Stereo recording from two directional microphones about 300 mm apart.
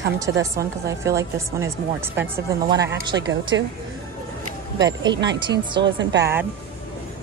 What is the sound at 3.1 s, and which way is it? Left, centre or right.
Speech, right.